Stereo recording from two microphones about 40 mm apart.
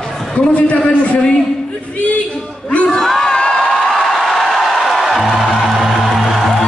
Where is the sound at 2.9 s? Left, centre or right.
Centre.